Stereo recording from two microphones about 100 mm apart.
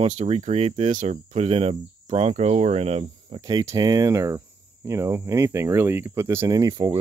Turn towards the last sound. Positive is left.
turn(degrees=-35)  # may be behind; listen again after turning